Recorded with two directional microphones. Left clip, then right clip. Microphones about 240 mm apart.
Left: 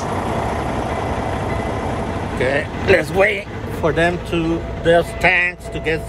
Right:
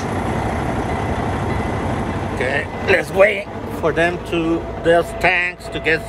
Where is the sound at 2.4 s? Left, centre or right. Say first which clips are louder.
Left 2 dB; centre.